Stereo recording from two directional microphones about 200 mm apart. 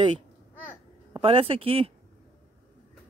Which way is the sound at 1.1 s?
30° right (ahead or behind).